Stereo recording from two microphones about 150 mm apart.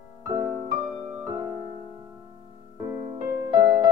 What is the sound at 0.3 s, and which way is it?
Music, 15° right (ahead or behind).